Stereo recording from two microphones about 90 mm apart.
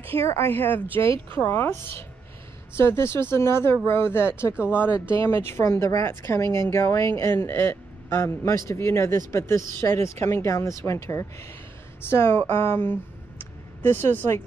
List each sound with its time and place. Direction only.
0.6 s speech: 20° left (ahead or behind)
4.8 s speech: 15° right (ahead or behind)
5.1 s a man's voice: 30° left (ahead or behind)